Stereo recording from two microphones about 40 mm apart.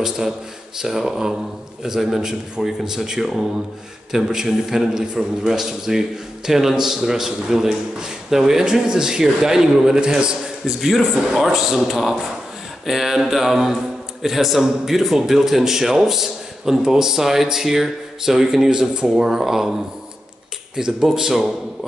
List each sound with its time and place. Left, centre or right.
0.7 s a man's voice: centre
20.7 s a man's voice: centre